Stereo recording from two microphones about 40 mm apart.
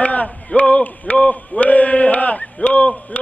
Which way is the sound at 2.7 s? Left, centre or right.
Left.